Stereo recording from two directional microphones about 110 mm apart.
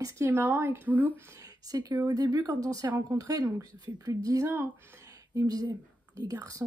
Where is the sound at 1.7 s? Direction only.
35° right (ahead or behind).